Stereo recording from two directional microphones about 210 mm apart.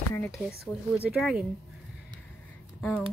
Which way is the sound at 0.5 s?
5° right (ahead or behind).